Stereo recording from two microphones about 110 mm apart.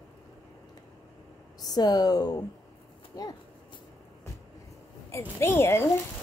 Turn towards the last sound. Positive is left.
turn(degrees=25)  # may be behind; listen again after turning